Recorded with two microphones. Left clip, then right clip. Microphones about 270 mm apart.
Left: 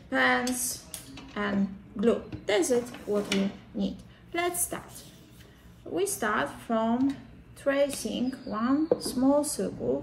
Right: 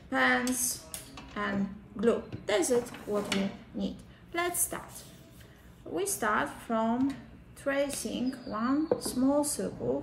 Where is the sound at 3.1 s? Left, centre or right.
Centre.